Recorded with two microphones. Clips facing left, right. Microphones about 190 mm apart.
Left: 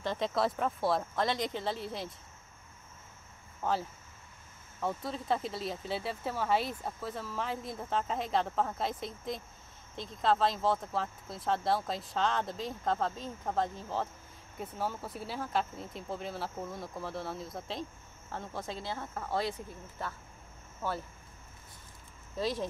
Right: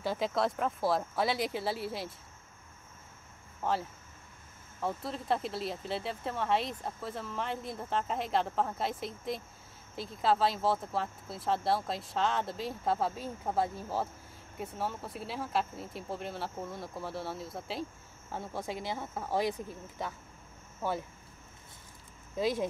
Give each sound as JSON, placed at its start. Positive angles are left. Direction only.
{"t": 0.0, "sound": "speech", "side_deg": -5}
{"t": 3.6, "sound": "speech", "side_deg": 0}
{"t": 4.8, "sound": "speech", "side_deg": 0}
{"t": 22.4, "sound": "speech", "side_deg": -10}